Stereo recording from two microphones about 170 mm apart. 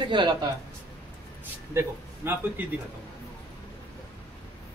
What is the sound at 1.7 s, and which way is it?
Speech, 15° right (ahead or behind).